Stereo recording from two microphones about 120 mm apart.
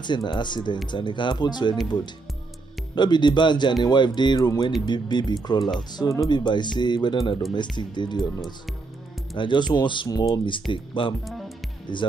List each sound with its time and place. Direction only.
0.0 s speech: 40° left (ahead or behind)
2.9 s speech: 40° left (ahead or behind)
9.4 s speech: 40° left (ahead or behind)
11.2 s music: centre (ahead or behind)
11.9 s speech: 40° left (ahead or behind)